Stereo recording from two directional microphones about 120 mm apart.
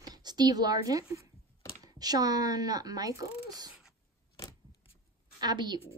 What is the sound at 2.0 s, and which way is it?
A woman's voice, 35° right (ahead or behind).